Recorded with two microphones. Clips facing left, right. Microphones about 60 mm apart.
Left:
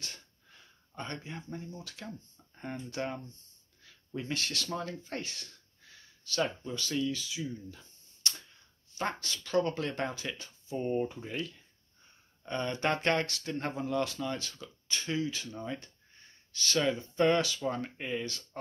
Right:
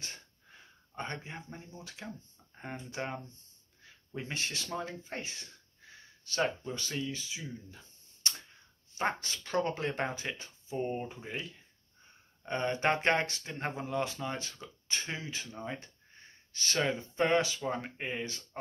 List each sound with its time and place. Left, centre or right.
0.0 s sniff: right
2.5 s speech: centre
6.2 s speech: right